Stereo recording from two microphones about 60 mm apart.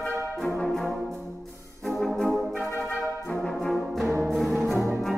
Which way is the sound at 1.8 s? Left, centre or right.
Centre.